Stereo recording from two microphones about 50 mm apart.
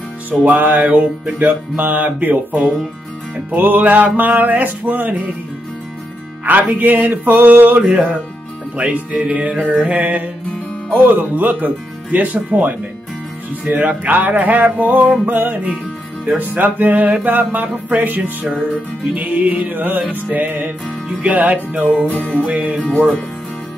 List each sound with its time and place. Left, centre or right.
0.3 s music: right
3.5 s music: right
6.5 s music: right
22.1 s music: left
22.5 s music: right